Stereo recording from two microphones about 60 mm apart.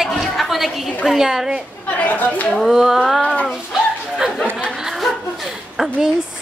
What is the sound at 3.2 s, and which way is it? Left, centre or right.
Speech, left.